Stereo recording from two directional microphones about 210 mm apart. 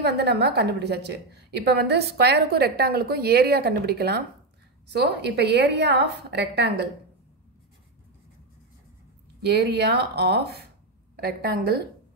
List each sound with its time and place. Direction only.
0.0 s a woman's voice: 50° right (ahead or behind)
9.5 s a woman's voice: 50° right (ahead or behind)